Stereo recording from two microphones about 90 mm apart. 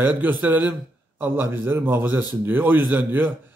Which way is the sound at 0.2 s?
20° right (ahead or behind).